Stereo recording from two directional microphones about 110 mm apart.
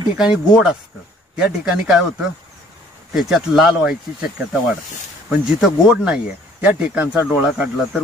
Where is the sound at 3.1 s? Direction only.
5° right (ahead or behind).